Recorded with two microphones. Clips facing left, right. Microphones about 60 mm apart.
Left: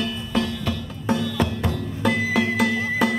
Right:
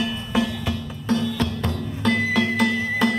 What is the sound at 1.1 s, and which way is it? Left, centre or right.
Music, centre.